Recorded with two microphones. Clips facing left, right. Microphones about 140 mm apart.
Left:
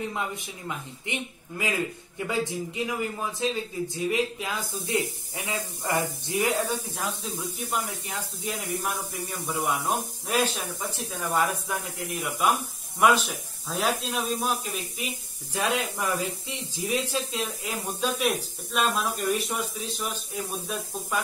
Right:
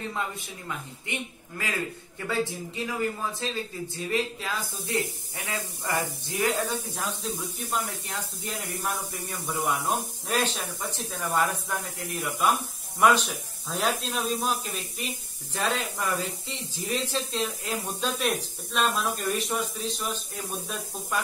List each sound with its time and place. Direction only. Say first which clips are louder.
1.1 s a woman's voice: left 2 dB; 20° left (ahead or behind)
7.0 s speech: even; 5° left (ahead or behind)